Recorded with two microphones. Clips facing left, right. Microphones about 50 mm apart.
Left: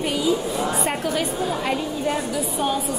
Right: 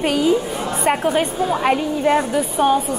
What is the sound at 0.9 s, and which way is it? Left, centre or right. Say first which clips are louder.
A woman's voice: right 5 dB; right.